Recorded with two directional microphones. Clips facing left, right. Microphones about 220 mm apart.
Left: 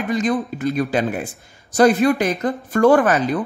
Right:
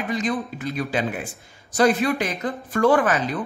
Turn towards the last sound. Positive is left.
turn(degrees=45)  # may be behind; listen again after turning